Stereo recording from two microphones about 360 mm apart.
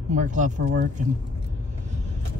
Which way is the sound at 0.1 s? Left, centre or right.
Right.